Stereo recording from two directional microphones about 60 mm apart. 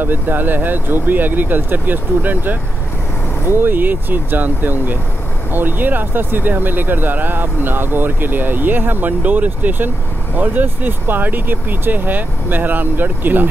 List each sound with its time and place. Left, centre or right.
0.0 s speech: right
3.5 s speech: right